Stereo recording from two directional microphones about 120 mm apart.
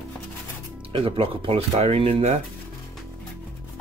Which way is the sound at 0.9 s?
50° right (ahead or behind).